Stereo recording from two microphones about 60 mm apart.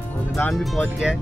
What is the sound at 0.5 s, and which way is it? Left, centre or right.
Speech, centre.